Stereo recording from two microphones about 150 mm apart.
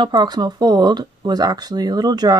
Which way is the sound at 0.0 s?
30° right (ahead or behind).